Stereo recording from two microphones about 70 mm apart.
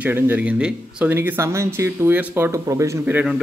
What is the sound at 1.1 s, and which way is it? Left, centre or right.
Speech, right.